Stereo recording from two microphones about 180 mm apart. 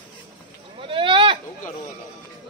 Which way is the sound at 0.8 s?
30° right (ahead or behind).